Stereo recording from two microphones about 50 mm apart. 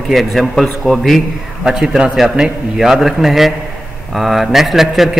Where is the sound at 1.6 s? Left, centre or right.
Centre.